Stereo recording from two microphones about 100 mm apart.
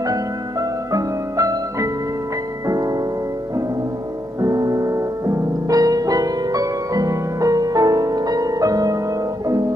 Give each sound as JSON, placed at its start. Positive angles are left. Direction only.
{"t": 0.0, "sound": "music", "side_deg": -35}
{"t": 4.4, "sound": "music", "side_deg": -35}